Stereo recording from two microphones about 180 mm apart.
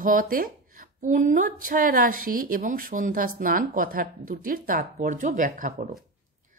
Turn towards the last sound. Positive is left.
turn(degrees=-50)  # may be behind; listen again after turning